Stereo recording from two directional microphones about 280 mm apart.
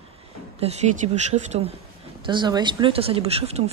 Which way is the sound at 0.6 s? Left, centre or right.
Right.